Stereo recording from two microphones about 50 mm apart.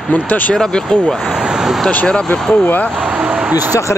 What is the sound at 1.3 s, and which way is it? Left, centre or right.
Vehicle, centre.